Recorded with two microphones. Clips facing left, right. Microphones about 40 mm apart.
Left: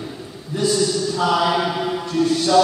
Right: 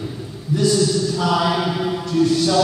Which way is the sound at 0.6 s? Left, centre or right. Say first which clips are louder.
Right 1 dB; centre.